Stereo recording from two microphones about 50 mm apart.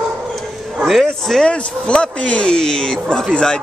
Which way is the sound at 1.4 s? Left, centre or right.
Left.